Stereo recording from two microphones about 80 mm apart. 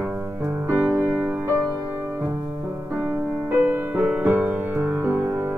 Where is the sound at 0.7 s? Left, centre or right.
Right.